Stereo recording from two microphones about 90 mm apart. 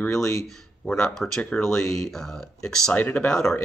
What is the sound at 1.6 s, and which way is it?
Speech, 35° left (ahead or behind).